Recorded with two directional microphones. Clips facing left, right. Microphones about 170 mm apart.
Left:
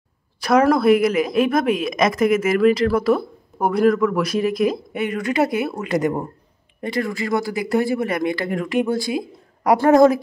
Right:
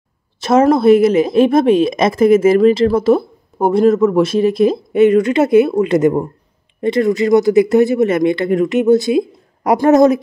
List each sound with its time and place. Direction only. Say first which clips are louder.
0.4 s a woman's voice: right 4 dB; 25° right (ahead or behind)